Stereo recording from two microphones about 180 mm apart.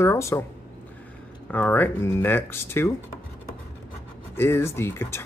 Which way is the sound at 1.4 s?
10° left (ahead or behind).